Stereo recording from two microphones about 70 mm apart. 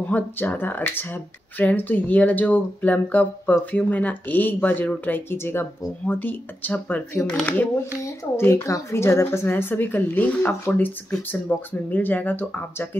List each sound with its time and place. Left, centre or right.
0.1 s speech: left
8.4 s speech: left